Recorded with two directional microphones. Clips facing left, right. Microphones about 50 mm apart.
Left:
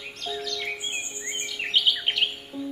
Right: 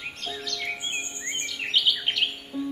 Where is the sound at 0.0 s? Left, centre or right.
Right.